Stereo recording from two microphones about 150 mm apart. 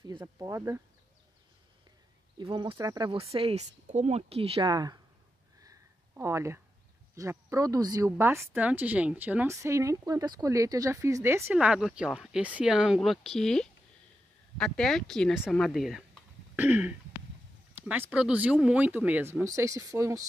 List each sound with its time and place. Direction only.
0.4 s speech: 20° right (ahead or behind)
2.3 s speech: 30° right (ahead or behind)
3.1 s speech: 40° right (ahead or behind)
5.6 s a sound: 20° right (ahead or behind)
7.2 s speech: 20° right (ahead or behind)
19.4 s speech: 20° right (ahead or behind)